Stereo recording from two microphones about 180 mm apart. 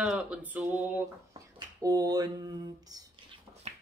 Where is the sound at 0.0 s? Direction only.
5° right (ahead or behind).